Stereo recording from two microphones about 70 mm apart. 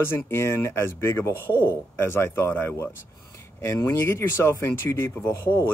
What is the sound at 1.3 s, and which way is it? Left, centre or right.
Speech, right.